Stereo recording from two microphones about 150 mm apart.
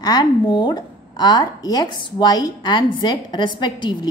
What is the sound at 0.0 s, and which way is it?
A woman's voice, 25° left (ahead or behind).